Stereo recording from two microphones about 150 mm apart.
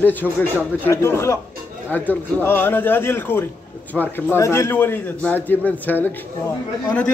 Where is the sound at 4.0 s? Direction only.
Centre (ahead or behind).